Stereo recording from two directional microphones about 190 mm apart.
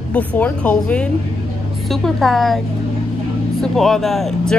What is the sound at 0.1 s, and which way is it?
A woman's voice, 5° left (ahead or behind).